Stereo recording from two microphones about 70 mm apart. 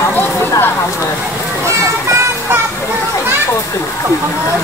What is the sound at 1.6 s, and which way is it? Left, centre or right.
Music, right.